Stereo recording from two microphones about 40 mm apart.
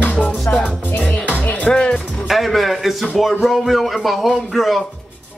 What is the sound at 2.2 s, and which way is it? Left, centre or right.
A man's voice, centre.